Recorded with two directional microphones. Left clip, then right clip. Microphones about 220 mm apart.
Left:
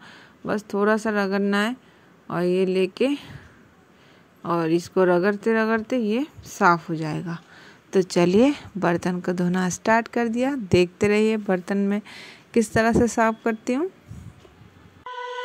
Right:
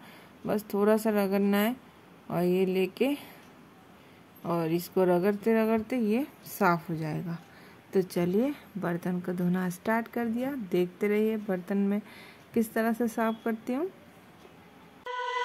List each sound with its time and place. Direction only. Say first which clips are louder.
0.0 s speech: left 5 dB; 20° left (ahead or behind)
4.4 s speech: left 7 dB; 20° left (ahead or behind)